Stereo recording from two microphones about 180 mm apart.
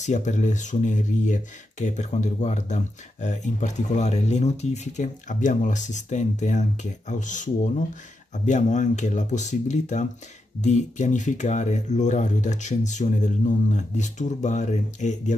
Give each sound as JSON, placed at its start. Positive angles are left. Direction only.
{"t": 0.0, "sound": "speech", "side_deg": 40}